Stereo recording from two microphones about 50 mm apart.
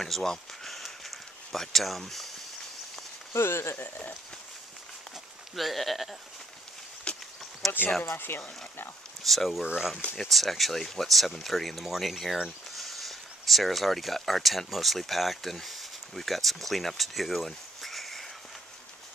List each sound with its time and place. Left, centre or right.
0.0 s a sound: centre
3.3 s speech: left
3.7 s speech: left
5.6 s speech: centre
7.1 s a sound: left
7.6 s speech: centre
8.3 s speech: left
9.2 s speech: centre